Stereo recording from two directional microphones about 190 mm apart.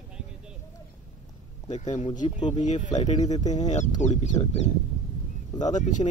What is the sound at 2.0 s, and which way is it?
Speech, 40° left (ahead or behind).